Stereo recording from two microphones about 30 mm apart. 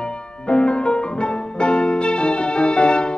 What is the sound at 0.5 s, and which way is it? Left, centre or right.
Music, left.